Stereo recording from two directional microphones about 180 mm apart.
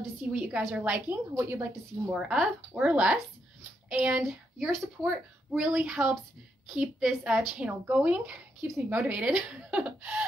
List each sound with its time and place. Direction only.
0.0 s a woman's voice: 10° right (ahead or behind)
2.1 s a child's voice: centre (ahead or behind)